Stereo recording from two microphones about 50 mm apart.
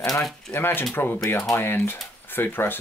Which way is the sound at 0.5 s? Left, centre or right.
Left.